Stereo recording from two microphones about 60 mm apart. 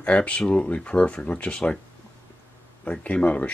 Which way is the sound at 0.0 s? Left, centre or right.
Left.